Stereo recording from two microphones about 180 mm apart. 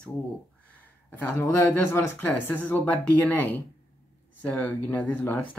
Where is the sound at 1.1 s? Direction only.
10° left (ahead or behind).